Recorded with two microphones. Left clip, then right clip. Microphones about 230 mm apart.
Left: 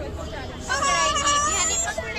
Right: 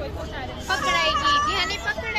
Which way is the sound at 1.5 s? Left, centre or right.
Right.